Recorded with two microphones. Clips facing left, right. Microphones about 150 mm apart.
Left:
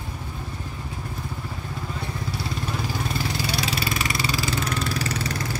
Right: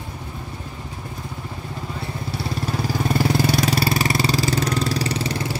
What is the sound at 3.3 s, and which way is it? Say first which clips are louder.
Vehicle: right 8 dB; 50° right (ahead or behind).